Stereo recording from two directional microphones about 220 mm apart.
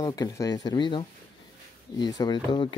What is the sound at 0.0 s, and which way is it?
Speech, 15° left (ahead or behind).